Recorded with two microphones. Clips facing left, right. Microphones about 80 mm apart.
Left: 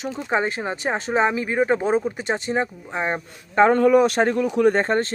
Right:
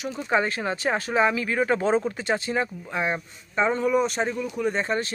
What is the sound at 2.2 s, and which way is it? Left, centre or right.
Speech, left.